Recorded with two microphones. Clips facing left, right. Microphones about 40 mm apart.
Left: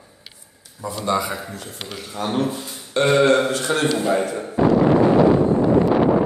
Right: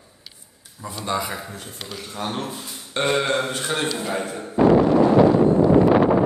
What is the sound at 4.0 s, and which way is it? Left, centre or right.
Speech, centre.